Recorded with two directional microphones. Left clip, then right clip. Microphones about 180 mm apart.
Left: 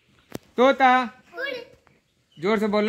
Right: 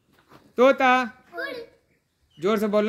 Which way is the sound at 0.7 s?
30° left (ahead or behind).